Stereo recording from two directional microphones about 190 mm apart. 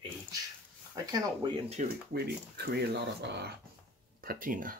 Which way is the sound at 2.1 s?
55° right (ahead or behind).